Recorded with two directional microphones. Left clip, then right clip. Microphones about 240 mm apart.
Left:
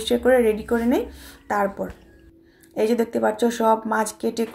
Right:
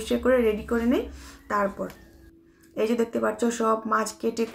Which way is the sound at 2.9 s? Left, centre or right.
Centre.